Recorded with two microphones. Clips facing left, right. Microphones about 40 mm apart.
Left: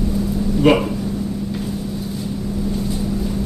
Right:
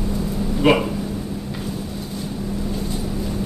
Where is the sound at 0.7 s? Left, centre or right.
Centre.